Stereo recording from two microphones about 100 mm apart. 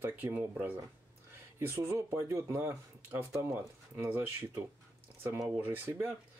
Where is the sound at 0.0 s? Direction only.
15° right (ahead or behind).